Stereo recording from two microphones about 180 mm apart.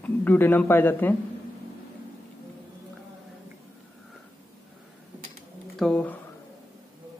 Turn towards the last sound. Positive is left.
turn(degrees=5)  # may be behind; listen again after turning